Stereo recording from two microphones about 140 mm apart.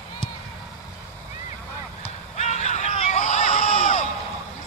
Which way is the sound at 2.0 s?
55° left (ahead or behind).